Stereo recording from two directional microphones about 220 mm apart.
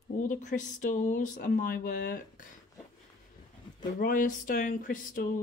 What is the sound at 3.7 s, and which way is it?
Speech, 40° left (ahead or behind).